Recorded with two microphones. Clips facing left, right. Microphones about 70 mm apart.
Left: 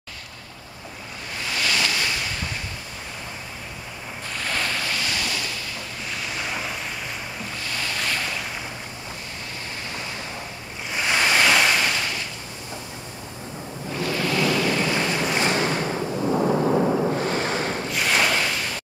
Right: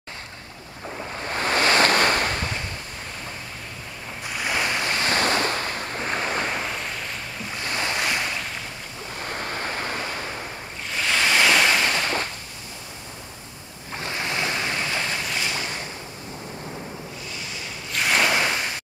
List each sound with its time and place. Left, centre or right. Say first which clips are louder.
1.2 s waves: right 6 dB; right
4.3 s waves: right 2 dB; centre
4.9 s waves: right 5 dB; right
7.6 s waves: right 4 dB; right
8.0 s boat: right 1 dB; centre
9.3 s waves: right 6 dB; right
10.9 s waves: left 1 dB; centre
13.9 s waves: left 4 dB; right
14.8 s waves: left 4 dB; left
15.2 s ocean: left 6 dB; left
17.9 s ocean: right 2 dB; centre